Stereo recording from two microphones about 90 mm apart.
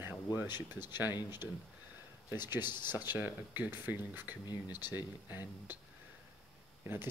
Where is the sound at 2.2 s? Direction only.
25° right (ahead or behind).